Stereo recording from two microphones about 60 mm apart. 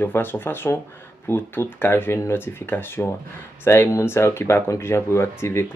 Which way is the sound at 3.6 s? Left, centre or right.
Left.